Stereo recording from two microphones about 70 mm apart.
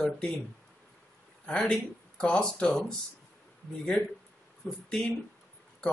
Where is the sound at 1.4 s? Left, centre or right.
Centre.